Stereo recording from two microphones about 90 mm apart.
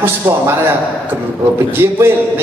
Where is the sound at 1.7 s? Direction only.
25° right (ahead or behind).